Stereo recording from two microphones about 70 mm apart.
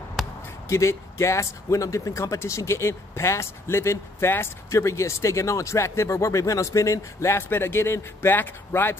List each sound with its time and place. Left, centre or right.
0.7 s speech: left